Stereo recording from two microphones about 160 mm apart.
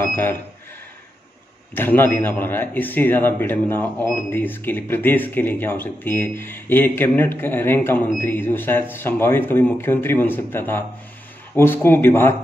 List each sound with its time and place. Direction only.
0.0 s a man's voice: 15° left (ahead or behind)
1.8 s a man's voice: 10° left (ahead or behind)